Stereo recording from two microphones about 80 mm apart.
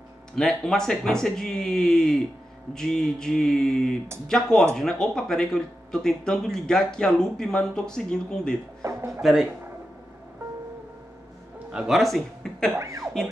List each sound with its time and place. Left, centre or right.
0.4 s speech: centre
8.8 s speech: right
9.2 s speech: centre
11.7 s speech: centre
12.0 s speech: centre
12.7 s speech: right